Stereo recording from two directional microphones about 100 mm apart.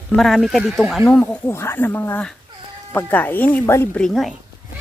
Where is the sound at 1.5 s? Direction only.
25° left (ahead or behind).